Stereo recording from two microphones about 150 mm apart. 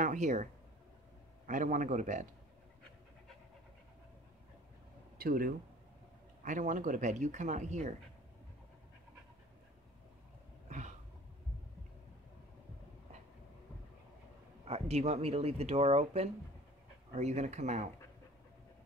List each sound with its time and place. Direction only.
0.0 s speech: 55° right (ahead or behind)
1.5 s speech: 60° right (ahead or behind)
5.2 s speech: 75° right (ahead or behind)
6.4 s speech: 60° right (ahead or behind)
10.7 s a sound: 55° right (ahead or behind)
14.6 s speech: 45° right (ahead or behind)